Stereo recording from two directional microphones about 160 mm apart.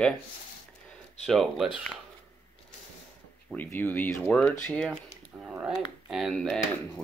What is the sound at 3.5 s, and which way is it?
Speech, 10° left (ahead or behind).